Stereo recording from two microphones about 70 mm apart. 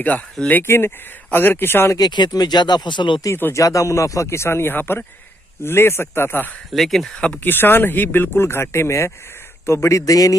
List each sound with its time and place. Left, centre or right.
0.5 s speech: left
2.0 s speech: left
3.5 s speech: left
6.7 s speech: centre
7.2 s speech: centre
7.4 s speech: left